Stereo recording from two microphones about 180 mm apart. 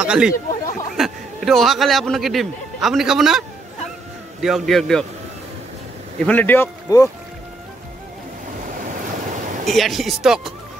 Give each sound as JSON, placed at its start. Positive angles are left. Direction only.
{"t": 0.0, "sound": "speech", "side_deg": -5}
{"t": 6.1, "sound": "speech", "side_deg": 10}
{"t": 8.6, "sound": "waves", "side_deg": -45}
{"t": 9.7, "sound": "speech", "side_deg": 0}